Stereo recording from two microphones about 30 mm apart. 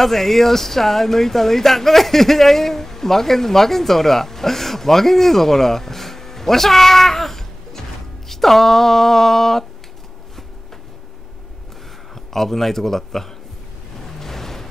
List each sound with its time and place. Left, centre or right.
0.0 s speech: centre
12.3 s speech: centre
14.0 s music: centre